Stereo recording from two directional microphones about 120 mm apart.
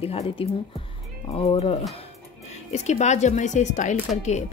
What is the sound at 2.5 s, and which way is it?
Speech, 70° left (ahead or behind).